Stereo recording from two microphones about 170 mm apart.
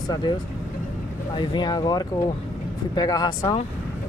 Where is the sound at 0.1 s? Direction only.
25° left (ahead or behind).